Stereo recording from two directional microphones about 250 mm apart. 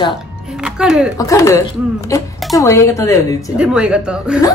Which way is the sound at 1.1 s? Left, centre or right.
Centre.